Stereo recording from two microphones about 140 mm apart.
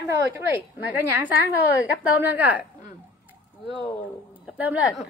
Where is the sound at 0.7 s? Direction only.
10° right (ahead or behind).